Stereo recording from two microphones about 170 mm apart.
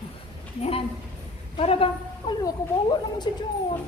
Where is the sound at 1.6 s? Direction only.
35° left (ahead or behind).